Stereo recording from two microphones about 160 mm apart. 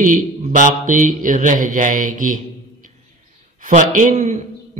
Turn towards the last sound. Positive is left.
turn(degrees=-50)  # may be behind; listen again after turning